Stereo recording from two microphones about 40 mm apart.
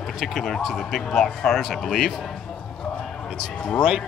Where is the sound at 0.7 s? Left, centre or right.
Centre.